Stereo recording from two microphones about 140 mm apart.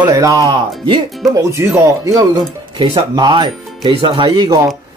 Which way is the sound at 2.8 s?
35° right (ahead or behind).